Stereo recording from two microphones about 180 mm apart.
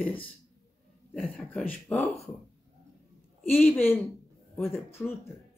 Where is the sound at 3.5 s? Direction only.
10° left (ahead or behind).